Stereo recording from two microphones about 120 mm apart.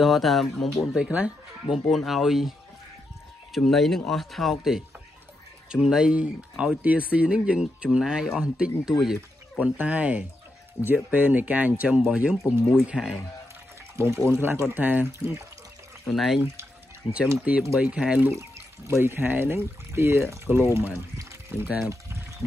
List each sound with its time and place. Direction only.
0.0 s speech: centre (ahead or behind)
1.9 s speech: centre (ahead or behind)
3.5 s speech: centre (ahead or behind)
13.9 s speech: 25° right (ahead or behind)
16.1 s speech: centre (ahead or behind)
17.0 s speech: 40° left (ahead or behind)
17.7 s speech: 10° right (ahead or behind)
18.9 s speech: 20° right (ahead or behind)